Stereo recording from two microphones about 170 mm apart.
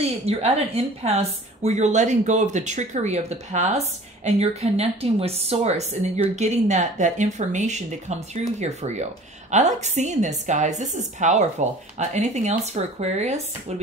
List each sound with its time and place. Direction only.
0.0 s a woman's voice: 35° right (ahead or behind)